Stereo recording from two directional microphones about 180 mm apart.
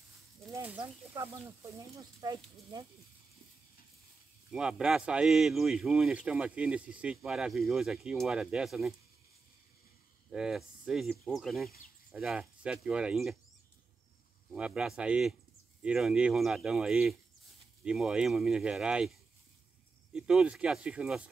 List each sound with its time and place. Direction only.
0.5 s a sound: 10° right (ahead or behind)
1.1 s speech: 15° right (ahead or behind)
4.5 s speech: 5° right (ahead or behind)
10.3 s speech: 5° right (ahead or behind)
14.5 s speech: 5° right (ahead or behind)